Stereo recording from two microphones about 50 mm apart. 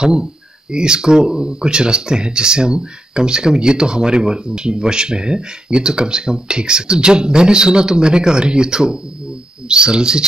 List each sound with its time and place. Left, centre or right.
0.0 s speech: centre